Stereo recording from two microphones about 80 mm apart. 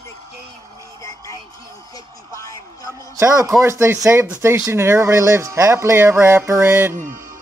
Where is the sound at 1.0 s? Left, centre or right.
Left.